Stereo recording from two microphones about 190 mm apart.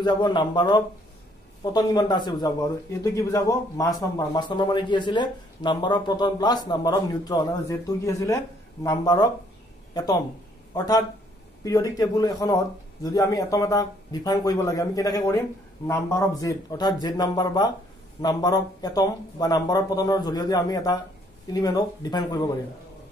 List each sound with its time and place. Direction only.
0.0 s a man's voice: 25° left (ahead or behind)